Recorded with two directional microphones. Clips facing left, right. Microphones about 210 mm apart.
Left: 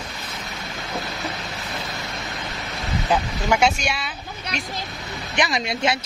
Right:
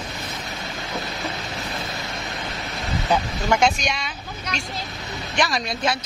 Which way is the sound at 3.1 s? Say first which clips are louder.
Even; 5° left (ahead or behind).